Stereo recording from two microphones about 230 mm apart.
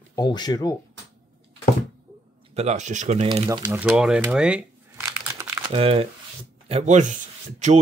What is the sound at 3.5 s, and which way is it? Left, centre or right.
Speech, centre.